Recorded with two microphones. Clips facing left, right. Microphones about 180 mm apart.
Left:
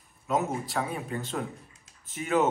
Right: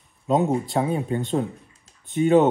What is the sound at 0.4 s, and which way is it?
Speech, 30° right (ahead or behind).